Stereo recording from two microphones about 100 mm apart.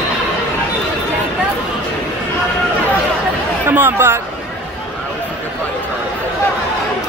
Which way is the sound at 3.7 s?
20° right (ahead or behind).